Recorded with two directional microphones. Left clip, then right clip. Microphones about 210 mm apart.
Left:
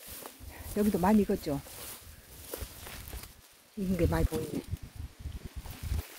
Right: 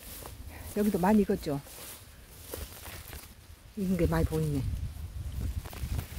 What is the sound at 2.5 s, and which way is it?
Walk, 20° left (ahead or behind).